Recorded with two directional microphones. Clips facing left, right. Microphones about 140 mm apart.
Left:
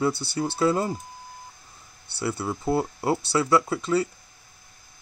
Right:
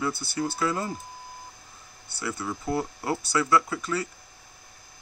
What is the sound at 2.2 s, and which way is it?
Speech, 30° left (ahead or behind).